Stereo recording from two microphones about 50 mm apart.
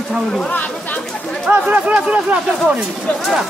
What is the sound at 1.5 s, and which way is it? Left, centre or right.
Speech, right.